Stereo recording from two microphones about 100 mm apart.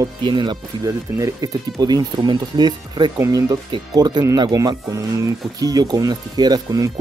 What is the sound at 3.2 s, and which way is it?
Speech, 35° right (ahead or behind).